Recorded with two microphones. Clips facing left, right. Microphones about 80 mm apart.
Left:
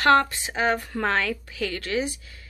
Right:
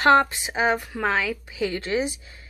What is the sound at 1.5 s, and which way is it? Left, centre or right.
Speech, centre.